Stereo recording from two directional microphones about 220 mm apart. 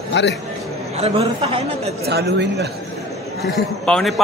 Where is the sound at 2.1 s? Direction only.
50° right (ahead or behind).